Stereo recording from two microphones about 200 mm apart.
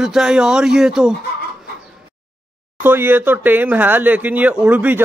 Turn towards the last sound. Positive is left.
turn(degrees=-10)  # may be behind; listen again after turning